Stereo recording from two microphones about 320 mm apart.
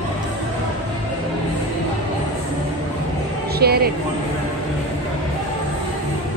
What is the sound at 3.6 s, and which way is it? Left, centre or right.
Speech, right.